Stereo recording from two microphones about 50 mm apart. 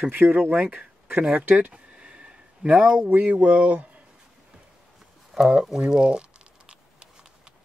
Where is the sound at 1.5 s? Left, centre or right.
Right.